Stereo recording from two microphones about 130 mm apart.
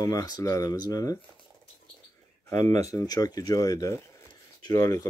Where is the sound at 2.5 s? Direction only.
25° left (ahead or behind).